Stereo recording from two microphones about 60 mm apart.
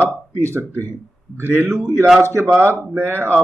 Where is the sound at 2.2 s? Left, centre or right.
Right.